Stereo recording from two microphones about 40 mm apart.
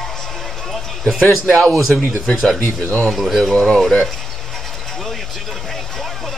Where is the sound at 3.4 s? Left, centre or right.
Centre.